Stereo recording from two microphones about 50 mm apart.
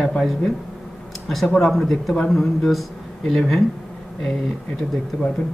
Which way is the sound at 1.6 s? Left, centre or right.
Centre.